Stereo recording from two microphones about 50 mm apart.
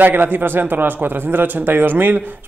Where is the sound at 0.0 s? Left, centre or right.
Right.